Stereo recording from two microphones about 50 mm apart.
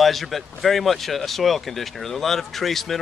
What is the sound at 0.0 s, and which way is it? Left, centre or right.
Speech, centre.